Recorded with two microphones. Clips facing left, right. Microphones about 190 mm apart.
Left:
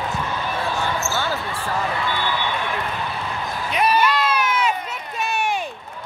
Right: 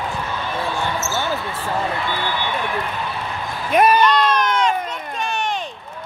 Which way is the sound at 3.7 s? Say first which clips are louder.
Right 5 dB; 50° right (ahead or behind).